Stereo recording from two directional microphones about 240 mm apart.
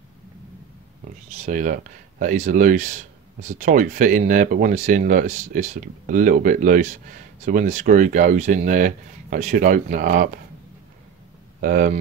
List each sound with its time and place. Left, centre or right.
1.3 s speech: right
11.6 s speech: right